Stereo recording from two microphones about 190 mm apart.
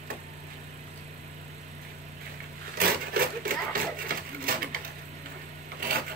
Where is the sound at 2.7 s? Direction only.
50° right (ahead or behind).